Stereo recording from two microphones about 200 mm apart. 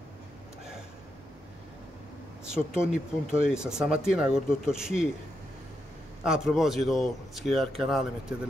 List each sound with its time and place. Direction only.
2.4 s speech: 5° right (ahead or behind)
6.2 s speech: centre (ahead or behind)